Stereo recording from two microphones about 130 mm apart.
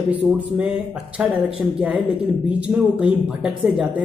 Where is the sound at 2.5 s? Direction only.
10° right (ahead or behind).